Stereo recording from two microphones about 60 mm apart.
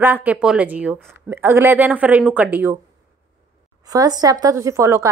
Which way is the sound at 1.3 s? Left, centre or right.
Right.